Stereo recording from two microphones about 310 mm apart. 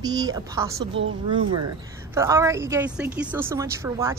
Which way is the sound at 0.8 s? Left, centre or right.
Right.